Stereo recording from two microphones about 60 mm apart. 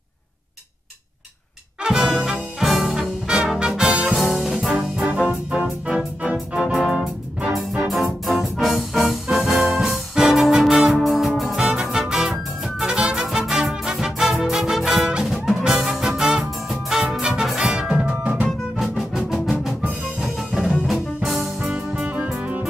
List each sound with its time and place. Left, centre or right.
1.8 s music: centre
4.1 s music: centre
18.8 s music: centre
21.6 s music: centre